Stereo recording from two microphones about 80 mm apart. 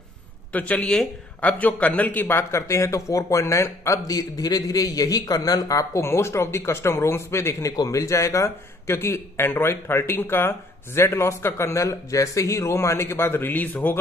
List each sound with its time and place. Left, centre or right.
0.5 s speech: centre; by 4.0 s left
4.1 s a man's voice: left
7.7 s a man's voice: left